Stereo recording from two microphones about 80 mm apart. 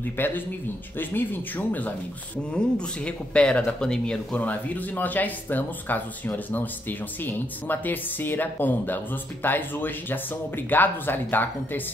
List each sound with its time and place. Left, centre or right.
0.0 s speech: left